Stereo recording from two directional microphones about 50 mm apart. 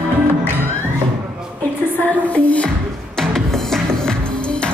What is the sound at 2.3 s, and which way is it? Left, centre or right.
Music, left.